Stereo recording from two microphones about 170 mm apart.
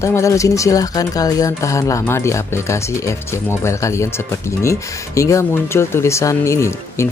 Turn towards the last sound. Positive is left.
turn(degrees=15)  # may be behind; listen again after turning